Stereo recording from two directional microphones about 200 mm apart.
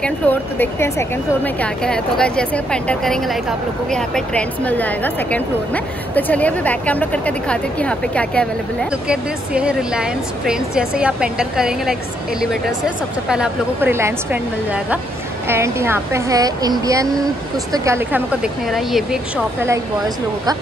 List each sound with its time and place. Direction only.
0.0 s a woman's voice: 10° left (ahead or behind)
9.0 s speech: 5° right (ahead or behind)